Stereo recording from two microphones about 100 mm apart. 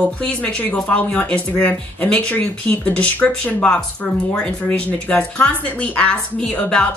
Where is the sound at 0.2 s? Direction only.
10° left (ahead or behind).